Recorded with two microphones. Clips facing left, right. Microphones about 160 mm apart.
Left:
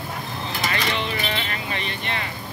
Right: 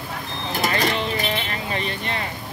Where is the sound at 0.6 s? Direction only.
40° right (ahead or behind).